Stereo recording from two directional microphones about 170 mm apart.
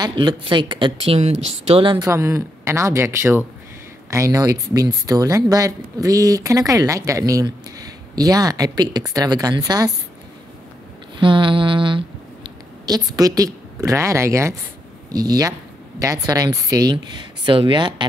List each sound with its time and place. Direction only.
0.0 s speech: 25° right (ahead or behind)
2.0 s speech: 15° right (ahead or behind)
11.1 s speech: 30° right (ahead or behind)